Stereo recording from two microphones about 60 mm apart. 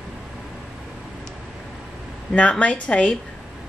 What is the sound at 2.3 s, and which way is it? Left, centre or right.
Speech, centre.